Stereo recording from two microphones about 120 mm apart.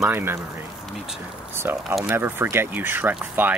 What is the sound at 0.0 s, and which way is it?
Speech, 20° right (ahead or behind).